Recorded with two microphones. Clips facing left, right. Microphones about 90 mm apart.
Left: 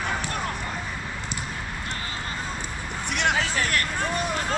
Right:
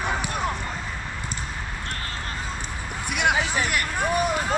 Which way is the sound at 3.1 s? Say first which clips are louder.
Right 2 dB; 10° right (ahead or behind).